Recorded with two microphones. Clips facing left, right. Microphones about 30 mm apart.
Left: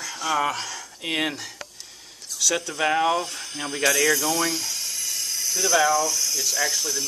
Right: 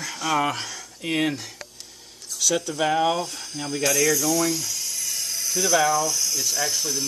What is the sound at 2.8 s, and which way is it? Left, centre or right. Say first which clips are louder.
Speech: even; centre.